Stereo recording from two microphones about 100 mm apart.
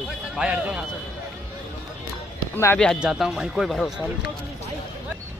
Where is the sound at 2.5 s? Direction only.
25° left (ahead or behind).